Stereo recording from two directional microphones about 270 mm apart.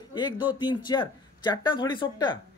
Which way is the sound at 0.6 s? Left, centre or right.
Centre.